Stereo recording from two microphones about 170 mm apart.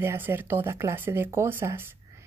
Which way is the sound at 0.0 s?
15° right (ahead or behind).